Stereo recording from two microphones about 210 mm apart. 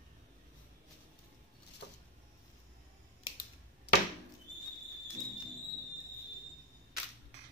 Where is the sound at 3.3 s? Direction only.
25° left (ahead or behind).